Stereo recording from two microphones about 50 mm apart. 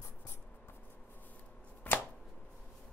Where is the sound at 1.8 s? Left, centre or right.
Left.